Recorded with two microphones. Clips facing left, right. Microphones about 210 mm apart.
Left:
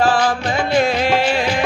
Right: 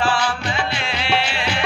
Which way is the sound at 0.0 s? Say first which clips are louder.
Left 5 dB; 45° left (ahead or behind).